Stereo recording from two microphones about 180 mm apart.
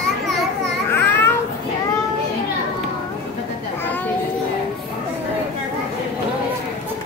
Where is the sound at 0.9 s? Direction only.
10° left (ahead or behind).